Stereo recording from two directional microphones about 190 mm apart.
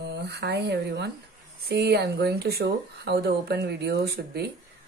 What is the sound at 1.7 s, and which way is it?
Speech, 60° right (ahead or behind).